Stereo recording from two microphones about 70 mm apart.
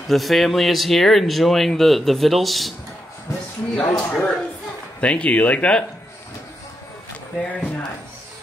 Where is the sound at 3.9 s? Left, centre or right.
Centre.